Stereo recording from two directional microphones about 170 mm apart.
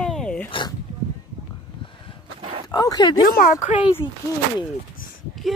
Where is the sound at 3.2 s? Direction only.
55° left (ahead or behind).